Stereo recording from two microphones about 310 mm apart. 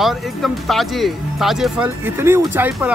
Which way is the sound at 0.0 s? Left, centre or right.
Centre.